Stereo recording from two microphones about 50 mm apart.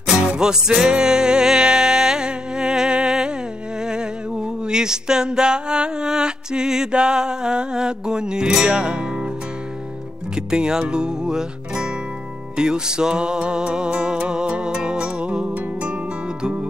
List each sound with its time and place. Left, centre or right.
0.0 s music: centre
3.8 s a sound: centre
10.3 s music: centre